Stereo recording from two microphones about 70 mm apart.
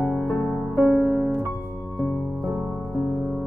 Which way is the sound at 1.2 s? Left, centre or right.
Right.